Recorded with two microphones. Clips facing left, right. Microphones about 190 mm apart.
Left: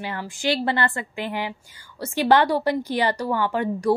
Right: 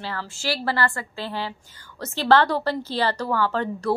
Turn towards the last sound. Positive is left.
turn(degrees=15)  # may be behind; listen again after turning